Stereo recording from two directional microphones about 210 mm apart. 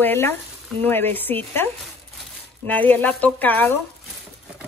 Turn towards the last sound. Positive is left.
turn(degrees=10)  # may be behind; listen again after turning